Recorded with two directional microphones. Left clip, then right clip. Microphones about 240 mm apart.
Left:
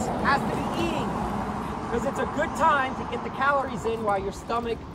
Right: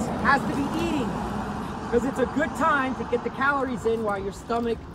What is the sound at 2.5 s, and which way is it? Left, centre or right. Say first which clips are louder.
Speech: left 2 dB; centre.